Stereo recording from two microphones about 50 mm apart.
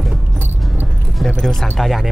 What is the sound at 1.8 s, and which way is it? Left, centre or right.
Speech, centre.